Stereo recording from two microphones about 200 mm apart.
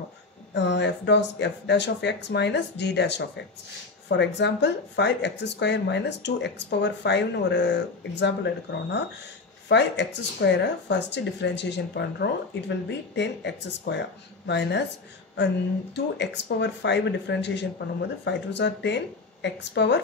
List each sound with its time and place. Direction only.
0.6 s speech: 60° left (ahead or behind)
9.7 s speech: 60° left (ahead or behind)